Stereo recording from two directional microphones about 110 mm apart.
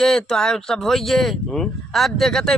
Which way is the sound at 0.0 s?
5° left (ahead or behind).